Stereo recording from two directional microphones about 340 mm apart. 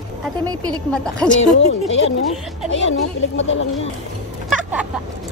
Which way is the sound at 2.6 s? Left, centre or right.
Left.